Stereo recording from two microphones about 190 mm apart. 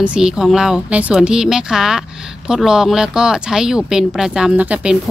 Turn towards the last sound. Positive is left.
turn(degrees=-5)  # may be behind; listen again after turning